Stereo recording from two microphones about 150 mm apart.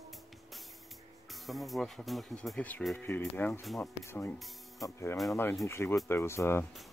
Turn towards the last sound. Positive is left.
turn(degrees=15)  # may be behind; listen again after turning